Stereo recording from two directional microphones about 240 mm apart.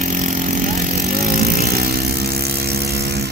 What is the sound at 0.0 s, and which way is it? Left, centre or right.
Vehicle, right.